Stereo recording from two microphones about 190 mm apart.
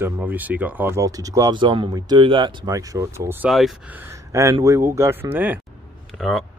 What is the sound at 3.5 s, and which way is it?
Speech, centre (ahead or behind).